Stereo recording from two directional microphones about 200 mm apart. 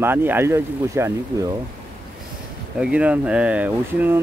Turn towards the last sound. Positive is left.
turn(degrees=-10)  # may be behind; listen again after turning